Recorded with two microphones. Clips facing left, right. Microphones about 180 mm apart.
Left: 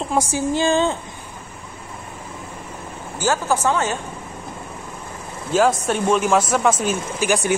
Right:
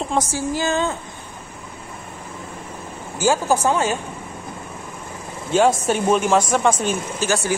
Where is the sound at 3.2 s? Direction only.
15° right (ahead or behind).